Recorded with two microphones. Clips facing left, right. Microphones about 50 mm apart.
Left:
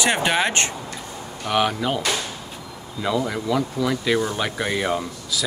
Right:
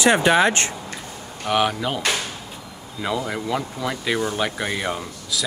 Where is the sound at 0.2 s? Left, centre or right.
Left.